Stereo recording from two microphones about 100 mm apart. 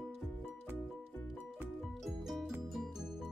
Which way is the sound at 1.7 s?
Centre (ahead or behind).